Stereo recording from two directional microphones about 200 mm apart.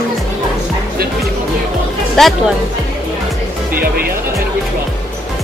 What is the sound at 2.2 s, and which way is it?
Speech, centre (ahead or behind).